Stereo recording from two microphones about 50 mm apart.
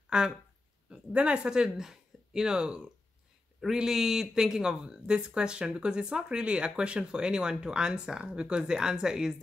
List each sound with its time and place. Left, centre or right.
0.1 s speech: centre